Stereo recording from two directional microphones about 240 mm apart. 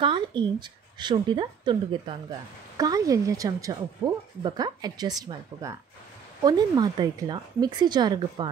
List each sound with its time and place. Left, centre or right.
0.0 s speech: centre